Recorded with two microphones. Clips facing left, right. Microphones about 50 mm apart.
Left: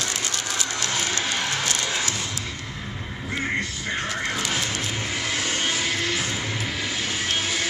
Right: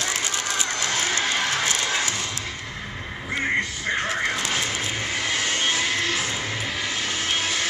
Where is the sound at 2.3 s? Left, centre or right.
Centre.